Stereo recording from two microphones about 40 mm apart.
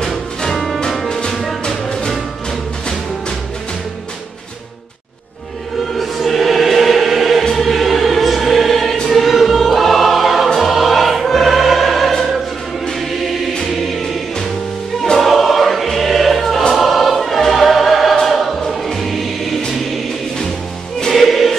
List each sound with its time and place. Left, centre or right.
0.0 s music: centre
1.0 s music: centre
5.9 s music: centre
9.1 s choir: centre
15.1 s music: centre
18.2 s choir: centre
21.1 s music: centre